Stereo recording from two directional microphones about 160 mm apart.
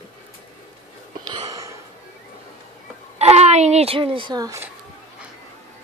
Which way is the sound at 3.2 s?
40° right (ahead or behind).